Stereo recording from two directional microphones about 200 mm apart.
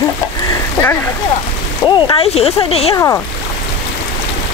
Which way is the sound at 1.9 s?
20° left (ahead or behind).